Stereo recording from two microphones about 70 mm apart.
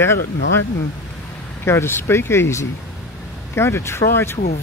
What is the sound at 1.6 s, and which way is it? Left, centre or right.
Speech, left.